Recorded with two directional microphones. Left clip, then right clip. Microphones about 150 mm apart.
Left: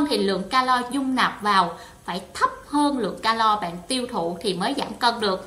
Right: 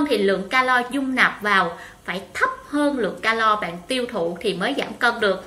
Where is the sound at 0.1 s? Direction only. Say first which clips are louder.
Right 2 dB; 30° left (ahead or behind).